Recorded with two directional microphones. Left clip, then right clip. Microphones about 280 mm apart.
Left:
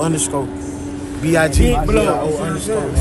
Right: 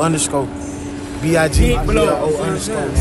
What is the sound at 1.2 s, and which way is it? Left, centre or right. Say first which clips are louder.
Speech: even; centre.